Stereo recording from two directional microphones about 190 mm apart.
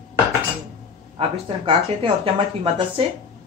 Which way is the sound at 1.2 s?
30° right (ahead or behind).